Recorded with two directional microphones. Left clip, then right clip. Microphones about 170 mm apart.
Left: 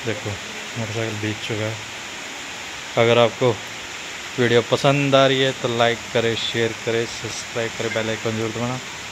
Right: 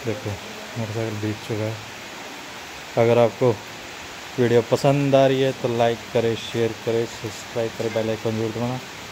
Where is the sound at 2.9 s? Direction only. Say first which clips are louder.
Left 1 dB; 10° right (ahead or behind).